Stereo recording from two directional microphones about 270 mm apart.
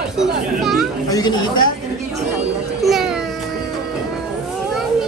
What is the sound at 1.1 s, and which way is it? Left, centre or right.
Speech, centre.